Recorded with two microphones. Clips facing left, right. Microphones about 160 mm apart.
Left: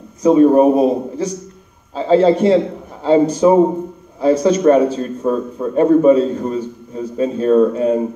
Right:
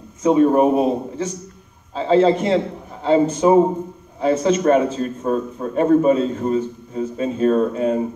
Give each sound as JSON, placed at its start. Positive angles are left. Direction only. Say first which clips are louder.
{"t": 0.2, "sound": "a man's voice", "louder": "left 4 dB", "side_deg": 35}